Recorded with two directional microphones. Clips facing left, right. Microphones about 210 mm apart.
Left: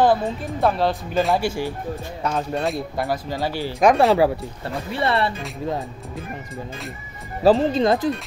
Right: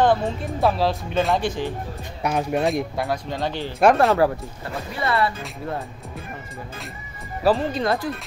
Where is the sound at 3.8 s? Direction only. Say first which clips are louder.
Even; centre (ahead or behind).